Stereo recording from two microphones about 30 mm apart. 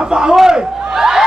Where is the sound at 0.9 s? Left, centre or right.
Centre.